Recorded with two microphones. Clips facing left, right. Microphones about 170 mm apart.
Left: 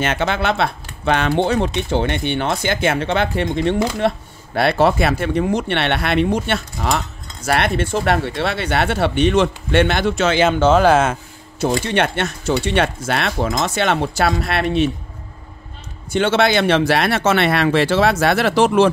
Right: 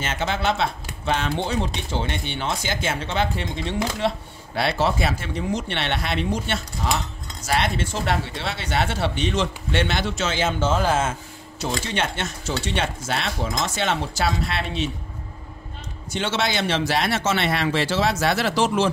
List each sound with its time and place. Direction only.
0.0 s speech: 65° left (ahead or behind)
11.6 s speech: 60° left (ahead or behind)
16.1 s speech: 55° left (ahead or behind)